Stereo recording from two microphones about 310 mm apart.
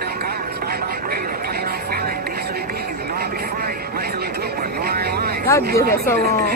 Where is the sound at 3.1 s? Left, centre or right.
Right.